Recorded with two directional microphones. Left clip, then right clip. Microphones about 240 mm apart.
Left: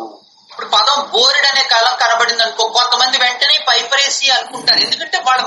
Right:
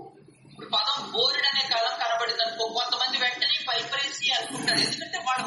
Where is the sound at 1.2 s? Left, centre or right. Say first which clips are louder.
Left 11 dB; left.